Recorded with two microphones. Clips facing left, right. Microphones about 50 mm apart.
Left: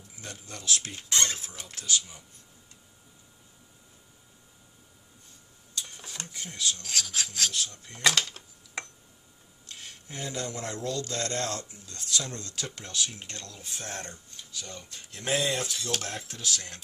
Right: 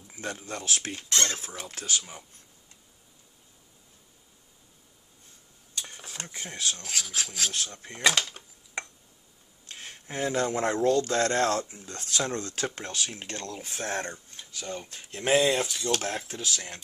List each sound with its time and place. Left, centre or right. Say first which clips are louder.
0.1 s speech: right 8 dB; right
1.0 s speech: even; centre
1.3 s speech: right 3 dB; right
5.9 s a sound: right 1 dB; centre
6.2 s speech: even; right
6.9 s speech: left 1 dB; centre
7.5 s speech: even; right
8.0 s a sound: right 1 dB; centre
9.7 s speech: right 4 dB; right
15.3 s speech: right 5 dB; centre
16.2 s speech: right 1 dB; right